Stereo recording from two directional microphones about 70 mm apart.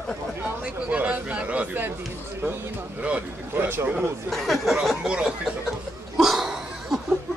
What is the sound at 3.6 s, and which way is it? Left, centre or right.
Speech, right.